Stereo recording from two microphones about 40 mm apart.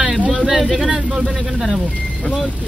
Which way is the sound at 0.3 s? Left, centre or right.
Right.